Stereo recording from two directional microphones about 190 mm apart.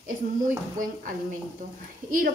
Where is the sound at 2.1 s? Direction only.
45° right (ahead or behind).